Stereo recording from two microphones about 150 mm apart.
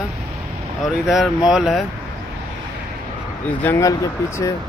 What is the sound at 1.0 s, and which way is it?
Speech, centre (ahead or behind).